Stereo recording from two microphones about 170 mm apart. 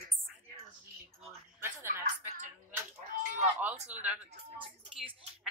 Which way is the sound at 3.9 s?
10° right (ahead or behind).